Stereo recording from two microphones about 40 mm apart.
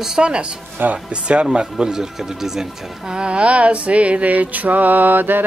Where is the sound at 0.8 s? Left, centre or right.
Right.